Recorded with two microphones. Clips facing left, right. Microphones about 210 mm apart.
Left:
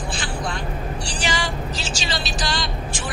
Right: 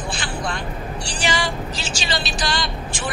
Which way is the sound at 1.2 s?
60° right (ahead or behind).